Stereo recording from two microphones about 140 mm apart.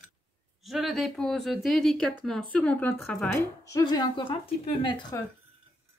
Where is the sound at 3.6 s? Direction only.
25° left (ahead or behind).